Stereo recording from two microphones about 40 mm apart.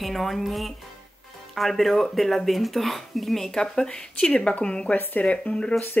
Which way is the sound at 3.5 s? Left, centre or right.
Centre.